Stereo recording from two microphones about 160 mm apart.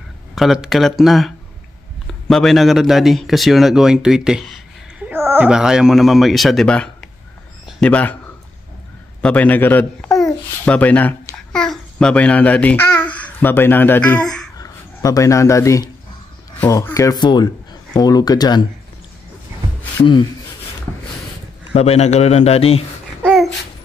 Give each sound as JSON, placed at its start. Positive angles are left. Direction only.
{"t": 0.4, "sound": "speech", "side_deg": 0}
{"t": 4.9, "sound": "a sound", "side_deg": -15}
{"t": 5.5, "sound": "speech", "side_deg": -5}
{"t": 9.2, "sound": "speech", "side_deg": 10}
{"t": 14.6, "sound": "speech", "side_deg": 20}
{"t": 21.7, "sound": "a man's voice", "side_deg": 40}
{"t": 23.2, "sound": "babbling", "side_deg": 0}